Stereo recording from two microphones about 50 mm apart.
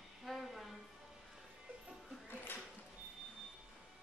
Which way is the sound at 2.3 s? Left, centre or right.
Left.